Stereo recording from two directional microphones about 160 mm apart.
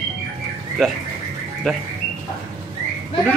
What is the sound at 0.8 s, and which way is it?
Speech, centre (ahead or behind).